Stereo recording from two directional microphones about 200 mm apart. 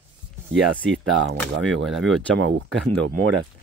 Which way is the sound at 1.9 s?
Centre (ahead or behind).